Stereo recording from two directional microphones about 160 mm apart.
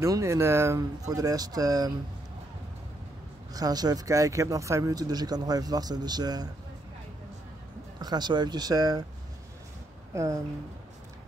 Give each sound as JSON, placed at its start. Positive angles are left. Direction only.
{"t": 0.0, "sound": "speech", "side_deg": -20}
{"t": 3.5, "sound": "speech", "side_deg": -25}
{"t": 8.0, "sound": "speech", "side_deg": -25}
{"t": 10.1, "sound": "speech", "side_deg": -20}